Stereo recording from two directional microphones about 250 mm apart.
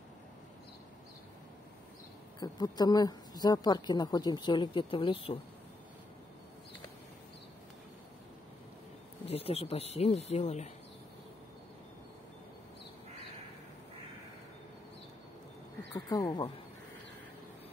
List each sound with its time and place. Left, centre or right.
2.4 s speech: centre
9.3 s speech: left
15.9 s speech: centre